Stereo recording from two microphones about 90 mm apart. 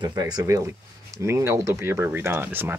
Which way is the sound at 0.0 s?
45° right (ahead or behind).